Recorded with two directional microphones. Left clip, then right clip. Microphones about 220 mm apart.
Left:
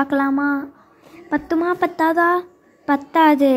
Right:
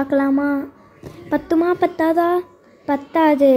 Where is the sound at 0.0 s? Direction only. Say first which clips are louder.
Right 1 dB; 10° left (ahead or behind).